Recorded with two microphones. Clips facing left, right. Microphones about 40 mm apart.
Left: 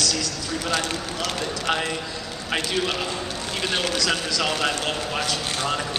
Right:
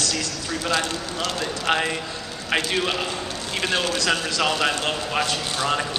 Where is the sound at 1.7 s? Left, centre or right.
Centre.